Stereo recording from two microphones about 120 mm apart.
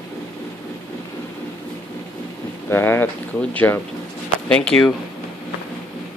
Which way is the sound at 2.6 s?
20° left (ahead or behind).